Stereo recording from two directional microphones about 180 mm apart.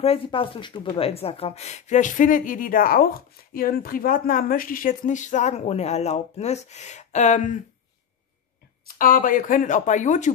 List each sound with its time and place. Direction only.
0.0 s speech: 30° left (ahead or behind)
8.8 s speech: 50° left (ahead or behind)